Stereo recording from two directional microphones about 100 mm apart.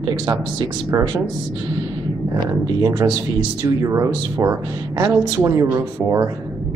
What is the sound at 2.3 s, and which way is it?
Speech, 45° right (ahead or behind).